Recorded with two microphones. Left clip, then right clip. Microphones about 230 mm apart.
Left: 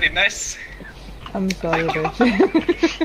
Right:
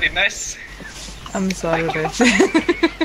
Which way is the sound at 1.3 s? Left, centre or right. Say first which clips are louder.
Right 1 dB; right.